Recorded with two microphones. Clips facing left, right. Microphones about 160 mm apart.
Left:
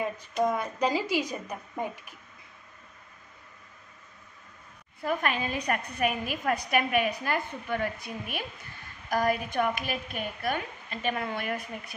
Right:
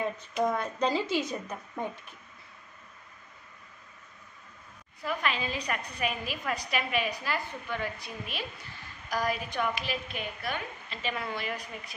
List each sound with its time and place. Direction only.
0.5 s a woman's voice: 10° left (ahead or behind)
5.0 s a woman's voice: 50° left (ahead or behind)